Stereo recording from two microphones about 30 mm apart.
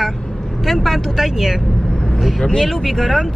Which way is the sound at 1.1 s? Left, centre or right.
Centre.